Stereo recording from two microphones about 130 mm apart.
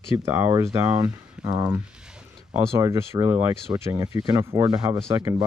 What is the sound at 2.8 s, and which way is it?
Speech, 25° right (ahead or behind).